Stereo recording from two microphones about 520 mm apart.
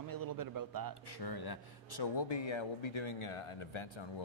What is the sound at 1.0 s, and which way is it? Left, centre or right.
Speech, left.